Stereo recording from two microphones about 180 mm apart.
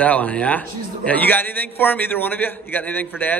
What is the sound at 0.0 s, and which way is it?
A man's voice, 10° left (ahead or behind).